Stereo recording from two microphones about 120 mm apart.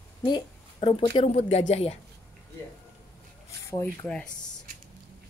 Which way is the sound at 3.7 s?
20° left (ahead or behind).